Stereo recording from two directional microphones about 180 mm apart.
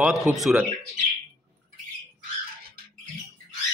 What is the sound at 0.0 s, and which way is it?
Speech, centre (ahead or behind).